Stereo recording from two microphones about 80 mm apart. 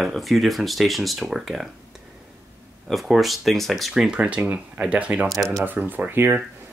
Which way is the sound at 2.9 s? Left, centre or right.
Centre.